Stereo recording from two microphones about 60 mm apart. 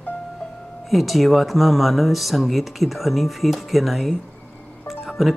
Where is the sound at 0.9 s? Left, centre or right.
Centre.